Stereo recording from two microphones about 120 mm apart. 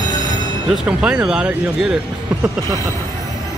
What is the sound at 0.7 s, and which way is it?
Speech, 10° right (ahead or behind).